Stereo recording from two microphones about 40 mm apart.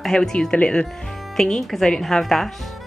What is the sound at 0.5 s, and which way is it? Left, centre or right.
Speech, left.